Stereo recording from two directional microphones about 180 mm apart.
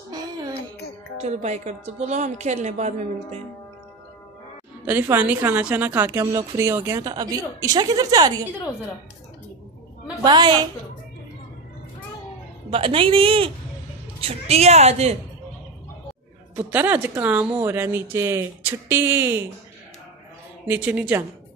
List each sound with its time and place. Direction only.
1.2 s a woman's voice: 40° right (ahead or behind)
4.8 s a woman's voice: 10° right (ahead or behind)
10.2 s speech: 25° right (ahead or behind)
12.6 s a woman's voice: 30° right (ahead or behind)
16.7 s a woman's voice: 10° right (ahead or behind)
20.6 s a woman's voice: 10° right (ahead or behind)